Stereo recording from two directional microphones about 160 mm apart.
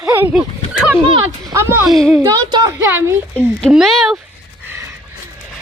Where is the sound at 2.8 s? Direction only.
15° right (ahead or behind).